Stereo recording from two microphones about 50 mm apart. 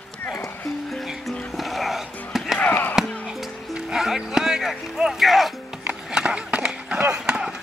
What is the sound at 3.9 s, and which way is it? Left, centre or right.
Music, centre.